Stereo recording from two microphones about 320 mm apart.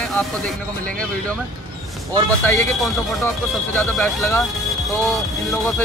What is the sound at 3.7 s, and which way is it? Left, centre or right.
Speech, centre.